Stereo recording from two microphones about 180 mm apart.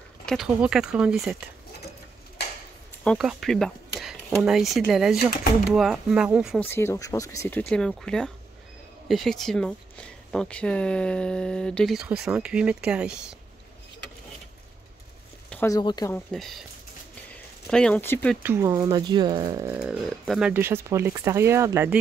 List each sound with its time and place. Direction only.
0.2 s speech: centre (ahead or behind)
3.0 s a sound: 5° left (ahead or behind)
3.3 s speech: centre (ahead or behind)
6.6 s speech: 15° left (ahead or behind); by 13.4 s 5° right (ahead or behind)
15.5 s a sound: 15° left (ahead or behind)
15.8 s speech: 25° left (ahead or behind)
16.1 s speech: centre (ahead or behind)
18.4 s speech: 15° right (ahead or behind)
19.8 s speech: 5° right (ahead or behind)